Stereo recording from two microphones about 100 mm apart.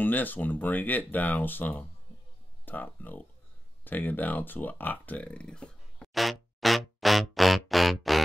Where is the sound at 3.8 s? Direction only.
20° left (ahead or behind).